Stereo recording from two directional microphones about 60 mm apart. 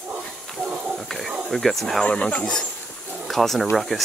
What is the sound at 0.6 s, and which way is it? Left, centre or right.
Snake, centre.